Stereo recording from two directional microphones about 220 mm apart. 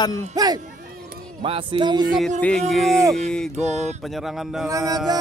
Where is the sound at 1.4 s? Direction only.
25° right (ahead or behind).